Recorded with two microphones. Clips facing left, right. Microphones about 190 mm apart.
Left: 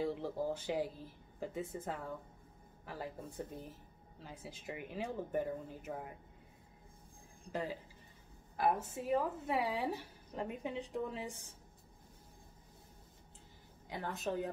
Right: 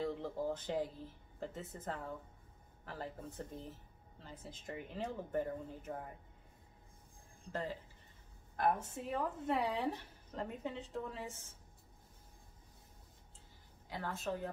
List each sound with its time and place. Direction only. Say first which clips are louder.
0.0 s speech: left 1 dB; 10° left (ahead or behind)
7.5 s speech: left 1 dB; 10° left (ahead or behind)
13.8 s a woman's voice: left 1 dB; 20° left (ahead or behind)